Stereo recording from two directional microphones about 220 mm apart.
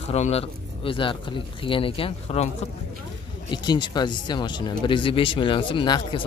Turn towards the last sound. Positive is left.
turn(degrees=20)  # may be behind; listen again after turning